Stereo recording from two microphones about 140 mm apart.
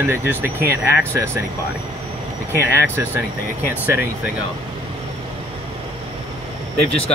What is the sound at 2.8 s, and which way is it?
Speech, 15° right (ahead or behind).